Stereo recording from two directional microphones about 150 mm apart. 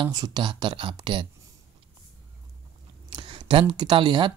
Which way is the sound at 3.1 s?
35° right (ahead or behind).